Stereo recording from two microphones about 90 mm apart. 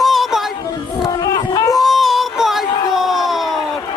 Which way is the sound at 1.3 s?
40° left (ahead or behind).